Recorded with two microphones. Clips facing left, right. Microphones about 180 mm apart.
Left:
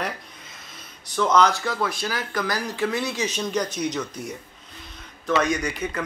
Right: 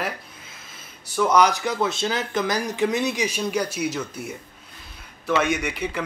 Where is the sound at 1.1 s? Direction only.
10° right (ahead or behind).